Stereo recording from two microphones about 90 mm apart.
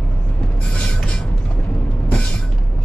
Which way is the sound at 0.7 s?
10° left (ahead or behind).